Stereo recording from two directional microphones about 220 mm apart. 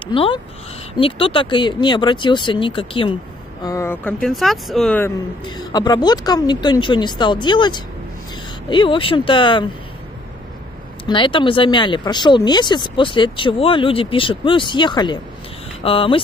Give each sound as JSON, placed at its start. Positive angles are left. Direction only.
{"t": 0.0, "sound": "speech", "side_deg": 25}
{"t": 3.6, "sound": "speech", "side_deg": 15}
{"t": 5.4, "sound": "speech", "side_deg": 20}
{"t": 11.1, "sound": "speech", "side_deg": 20}